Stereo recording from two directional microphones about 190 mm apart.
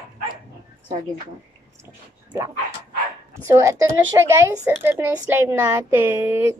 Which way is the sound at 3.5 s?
15° right (ahead or behind).